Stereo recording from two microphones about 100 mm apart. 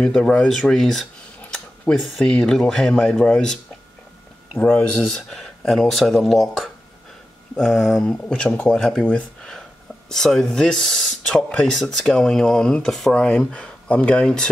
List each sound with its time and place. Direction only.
0.0 s speech: 10° left (ahead or behind)
4.6 s speech: 15° left (ahead or behind)
5.1 s speech: 5° left (ahead or behind)
8.7 s speech: centre (ahead or behind)